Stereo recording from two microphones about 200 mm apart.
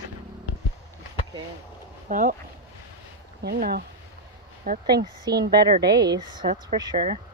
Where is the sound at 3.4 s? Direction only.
55° right (ahead or behind).